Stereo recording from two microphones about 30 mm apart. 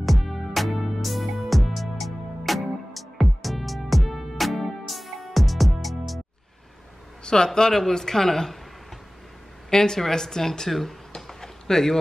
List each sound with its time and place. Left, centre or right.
0.0 s music: centre
7.2 s speech: left
9.7 s speech: centre
10.7 s a sound: centre